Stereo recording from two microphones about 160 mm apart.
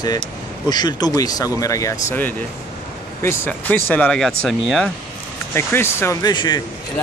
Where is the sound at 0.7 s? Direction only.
25° left (ahead or behind); by 4.9 s centre (ahead or behind).